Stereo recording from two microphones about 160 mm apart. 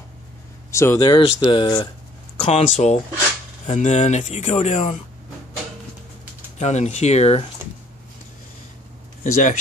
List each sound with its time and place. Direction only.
0.7 s speech: 15° left (ahead or behind)
2.4 s speech: 45° left (ahead or behind)
6.6 s speech: 45° left (ahead or behind)
9.2 s speech: 50° left (ahead or behind)